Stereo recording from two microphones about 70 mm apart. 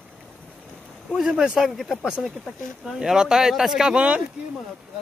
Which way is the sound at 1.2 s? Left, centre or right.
Centre.